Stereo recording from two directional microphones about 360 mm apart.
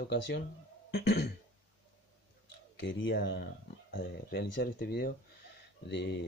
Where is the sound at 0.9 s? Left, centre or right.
Left.